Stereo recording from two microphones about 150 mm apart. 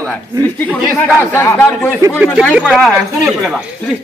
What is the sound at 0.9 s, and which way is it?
Speech, 15° left (ahead or behind).